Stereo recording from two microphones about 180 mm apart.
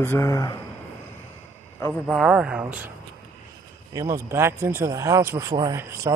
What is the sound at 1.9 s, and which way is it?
Speech, centre (ahead or behind).